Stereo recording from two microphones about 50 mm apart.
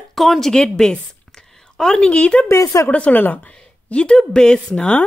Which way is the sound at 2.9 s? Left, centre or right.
Left.